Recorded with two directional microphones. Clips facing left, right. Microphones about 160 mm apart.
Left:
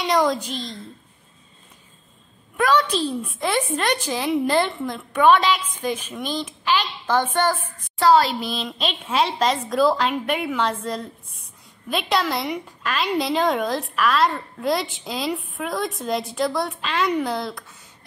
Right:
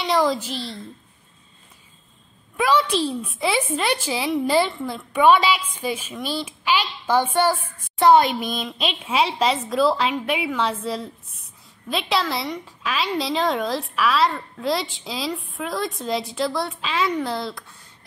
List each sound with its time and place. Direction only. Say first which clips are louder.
0.0 s a woman's voice: even; centre (ahead or behind)
2.5 s a woman's voice: even; 10° right (ahead or behind)
8.0 s speech: right 1 dB; 20° right (ahead or behind)
8.7 s a woman's voice: even; 10° right (ahead or behind)